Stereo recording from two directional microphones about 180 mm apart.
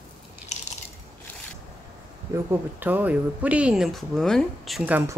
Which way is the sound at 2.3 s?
15° right (ahead or behind).